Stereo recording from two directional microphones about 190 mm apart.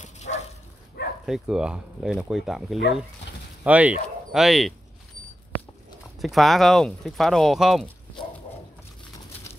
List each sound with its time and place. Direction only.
0.0 s dog: 35° left (ahead or behind)
1.2 s speech: 5° right (ahead or behind)
6.1 s speech: centre (ahead or behind)